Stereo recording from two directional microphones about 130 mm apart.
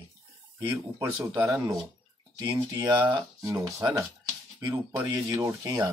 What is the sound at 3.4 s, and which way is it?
Speech, 25° right (ahead or behind).